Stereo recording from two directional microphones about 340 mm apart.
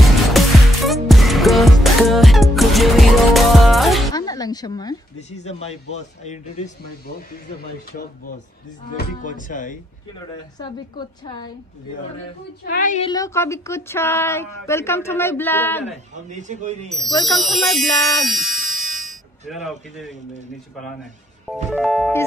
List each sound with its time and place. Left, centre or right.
0.4 s music: centre
4.1 s a sound: centre
5.4 s speech: centre
10.3 s a woman's voice: centre
12.7 s a woman's voice: left; by 16.0 s centre
16.2 s a man's voice: right
16.9 s speech: centre
21.7 s speech: centre